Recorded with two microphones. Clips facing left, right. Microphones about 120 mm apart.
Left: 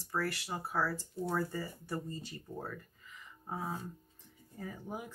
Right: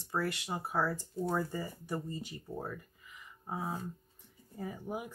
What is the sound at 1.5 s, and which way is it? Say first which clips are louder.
Speech: right 2 dB; 20° right (ahead or behind).